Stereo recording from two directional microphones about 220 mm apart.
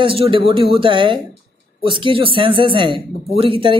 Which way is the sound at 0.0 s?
25° right (ahead or behind).